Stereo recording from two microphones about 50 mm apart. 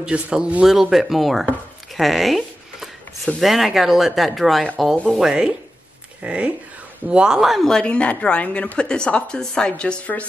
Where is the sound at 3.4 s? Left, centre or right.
Centre.